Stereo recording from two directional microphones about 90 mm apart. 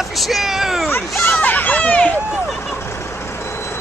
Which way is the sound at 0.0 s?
Centre (ahead or behind).